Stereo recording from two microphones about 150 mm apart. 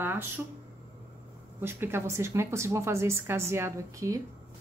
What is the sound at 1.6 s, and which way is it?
A woman's voice, 15° right (ahead or behind).